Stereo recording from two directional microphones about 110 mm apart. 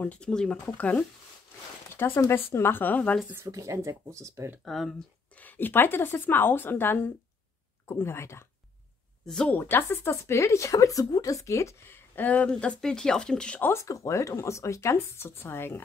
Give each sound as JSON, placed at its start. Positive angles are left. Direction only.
{"t": 0.0, "sound": "speech", "side_deg": 10}
{"t": 2.0, "sound": "speech", "side_deg": 25}
{"t": 3.4, "sound": "speech", "side_deg": -30}
{"t": 4.6, "sound": "speech", "side_deg": 0}
{"t": 5.4, "sound": "speech", "side_deg": 15}
{"t": 9.2, "sound": "speech", "side_deg": 5}
{"t": 13.6, "sound": "speech", "side_deg": 25}